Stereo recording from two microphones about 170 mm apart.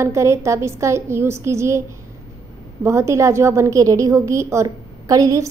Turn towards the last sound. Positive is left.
turn(degrees=-20)  # may be behind; listen again after turning